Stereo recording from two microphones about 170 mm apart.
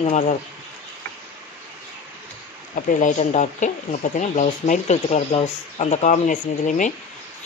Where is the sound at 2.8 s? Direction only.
50° left (ahead or behind).